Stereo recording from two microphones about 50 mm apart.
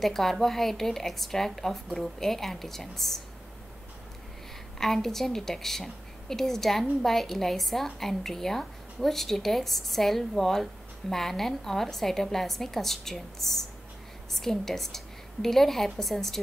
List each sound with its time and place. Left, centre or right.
0.0 s a woman's voice: centre
4.7 s a woman's voice: centre